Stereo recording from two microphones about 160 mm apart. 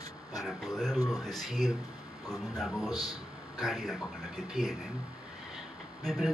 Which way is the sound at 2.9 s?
25° left (ahead or behind).